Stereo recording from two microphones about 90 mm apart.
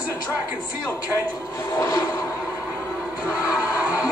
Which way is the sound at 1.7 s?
30° left (ahead or behind).